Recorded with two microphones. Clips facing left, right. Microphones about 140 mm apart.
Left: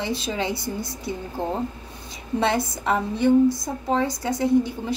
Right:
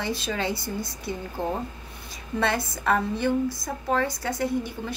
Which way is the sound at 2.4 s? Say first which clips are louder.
Left 3 dB; 25° left (ahead or behind).